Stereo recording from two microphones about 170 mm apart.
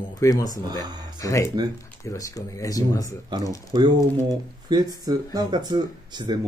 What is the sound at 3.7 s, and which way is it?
Speech, 25° right (ahead or behind).